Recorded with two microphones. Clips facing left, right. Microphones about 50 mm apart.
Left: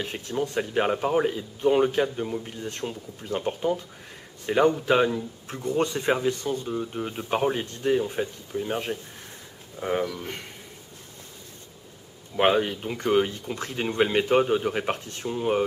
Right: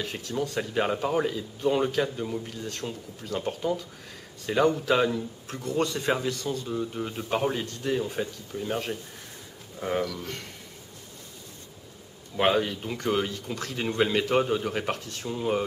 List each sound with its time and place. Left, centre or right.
0.0 s speech: left
1.2 s speech: left
12.4 s speech: centre